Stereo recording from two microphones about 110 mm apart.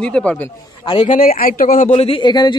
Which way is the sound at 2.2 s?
40° left (ahead or behind).